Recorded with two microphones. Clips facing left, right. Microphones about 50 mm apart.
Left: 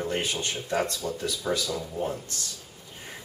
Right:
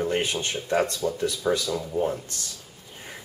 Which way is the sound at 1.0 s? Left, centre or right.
Centre.